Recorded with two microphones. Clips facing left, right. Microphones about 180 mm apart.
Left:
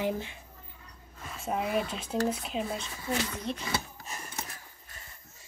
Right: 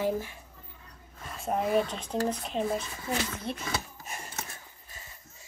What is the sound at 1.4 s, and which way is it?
Speech, centre (ahead or behind).